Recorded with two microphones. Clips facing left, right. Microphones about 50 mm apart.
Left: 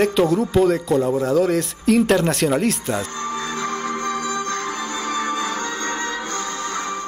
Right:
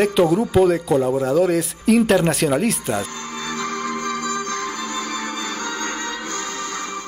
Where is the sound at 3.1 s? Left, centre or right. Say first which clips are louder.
Left 2 dB; left.